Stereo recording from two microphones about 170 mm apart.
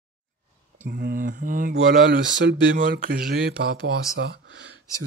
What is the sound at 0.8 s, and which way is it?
Speech, 60° right (ahead or behind).